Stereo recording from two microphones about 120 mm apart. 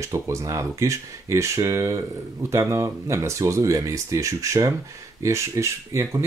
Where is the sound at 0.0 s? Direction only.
25° right (ahead or behind).